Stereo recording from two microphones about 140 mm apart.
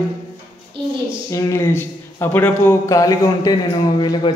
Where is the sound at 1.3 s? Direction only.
20° left (ahead or behind).